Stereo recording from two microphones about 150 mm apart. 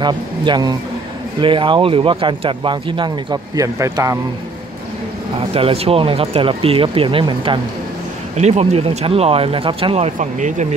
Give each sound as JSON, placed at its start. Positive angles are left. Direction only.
{"t": 0.0, "sound": "speech", "side_deg": -30}
{"t": 5.5, "sound": "speech", "side_deg": -40}
{"t": 8.4, "sound": "speech", "side_deg": -45}
{"t": 9.9, "sound": "speech", "side_deg": -55}